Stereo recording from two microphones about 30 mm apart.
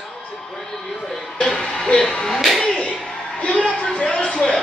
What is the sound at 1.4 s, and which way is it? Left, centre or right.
Music, centre.